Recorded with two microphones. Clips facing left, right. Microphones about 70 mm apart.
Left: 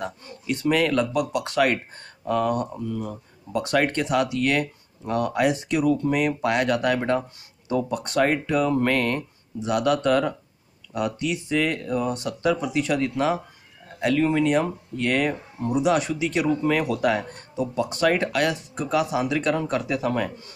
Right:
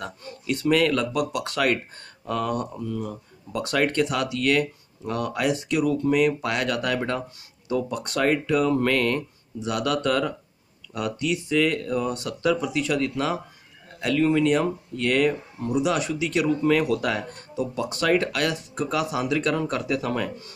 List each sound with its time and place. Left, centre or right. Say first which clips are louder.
0.0 s speech: left 2 dB; centre
3.5 s speech: even; centre
15.8 s speech: left 3 dB; left
16.3 s speech: right 2 dB; centre